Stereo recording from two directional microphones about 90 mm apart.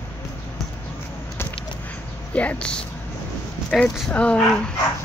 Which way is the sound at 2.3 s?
15° left (ahead or behind).